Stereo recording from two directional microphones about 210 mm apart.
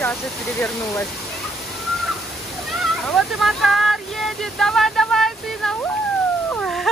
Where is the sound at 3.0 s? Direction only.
Centre (ahead or behind).